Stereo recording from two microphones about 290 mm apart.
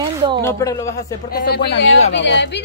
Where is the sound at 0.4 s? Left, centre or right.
Centre.